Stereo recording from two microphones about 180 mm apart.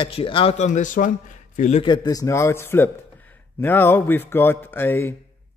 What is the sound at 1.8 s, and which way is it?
Speech, 20° left (ahead or behind).